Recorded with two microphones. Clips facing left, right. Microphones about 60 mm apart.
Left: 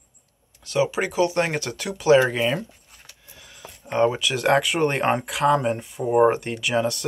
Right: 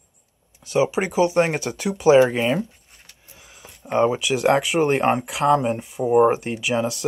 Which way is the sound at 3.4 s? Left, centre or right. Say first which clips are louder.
Left 3 dB; centre.